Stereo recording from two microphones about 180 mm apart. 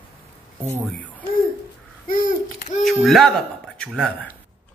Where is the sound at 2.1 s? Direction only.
50° left (ahead or behind).